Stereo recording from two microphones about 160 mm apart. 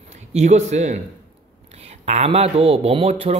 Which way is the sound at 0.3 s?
45° right (ahead or behind).